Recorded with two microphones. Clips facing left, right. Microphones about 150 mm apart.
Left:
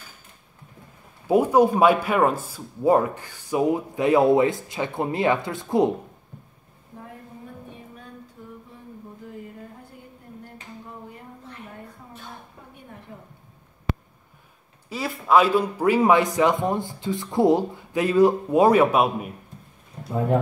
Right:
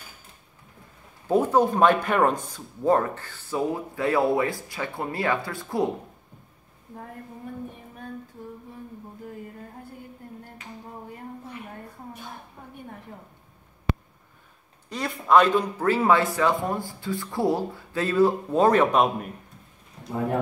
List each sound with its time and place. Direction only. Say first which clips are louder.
1.2 s speech: left 3 dB; 10° left (ahead or behind)
14.9 s speech: even; 5° left (ahead or behind)